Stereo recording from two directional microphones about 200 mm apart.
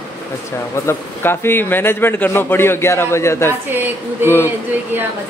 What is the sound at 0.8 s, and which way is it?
A man's voice, 10° left (ahead or behind).